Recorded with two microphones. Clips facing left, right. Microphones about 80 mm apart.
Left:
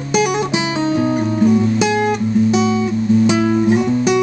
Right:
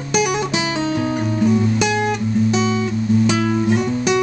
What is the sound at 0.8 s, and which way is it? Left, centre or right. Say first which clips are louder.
Music: left 4 dB; left.